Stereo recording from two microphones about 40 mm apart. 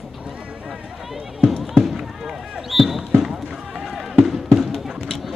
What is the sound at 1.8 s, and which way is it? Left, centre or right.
Speech, centre.